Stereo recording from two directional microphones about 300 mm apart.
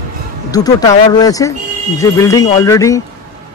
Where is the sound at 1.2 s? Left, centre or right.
Centre.